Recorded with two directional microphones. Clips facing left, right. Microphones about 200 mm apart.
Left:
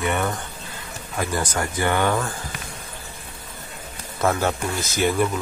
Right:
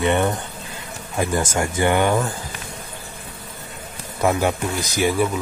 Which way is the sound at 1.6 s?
20° right (ahead or behind).